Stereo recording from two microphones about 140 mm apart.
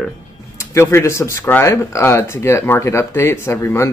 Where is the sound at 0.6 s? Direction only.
20° left (ahead or behind).